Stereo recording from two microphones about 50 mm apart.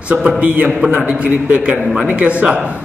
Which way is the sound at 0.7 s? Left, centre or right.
Right.